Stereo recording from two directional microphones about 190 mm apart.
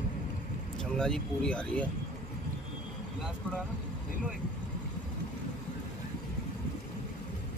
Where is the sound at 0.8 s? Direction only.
5° left (ahead or behind).